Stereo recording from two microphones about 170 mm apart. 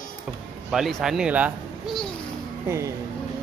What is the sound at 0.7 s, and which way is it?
A child's voice, centre (ahead or behind).